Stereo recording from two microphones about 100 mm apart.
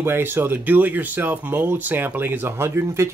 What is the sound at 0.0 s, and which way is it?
Speech, 20° right (ahead or behind).